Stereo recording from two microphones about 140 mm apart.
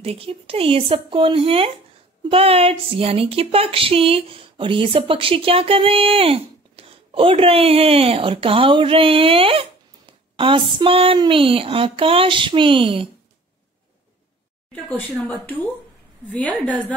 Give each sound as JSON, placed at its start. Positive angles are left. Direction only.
{"t": 0.0, "sound": "speech", "side_deg": -45}
{"t": 2.2, "sound": "a sound", "side_deg": -45}
{"t": 14.9, "sound": "speech", "side_deg": 10}